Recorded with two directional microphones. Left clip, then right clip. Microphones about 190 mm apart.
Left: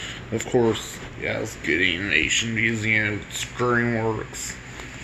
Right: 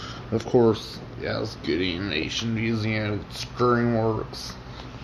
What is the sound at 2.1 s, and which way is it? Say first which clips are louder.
Speech: left 10 dB; 50° right (ahead or behind).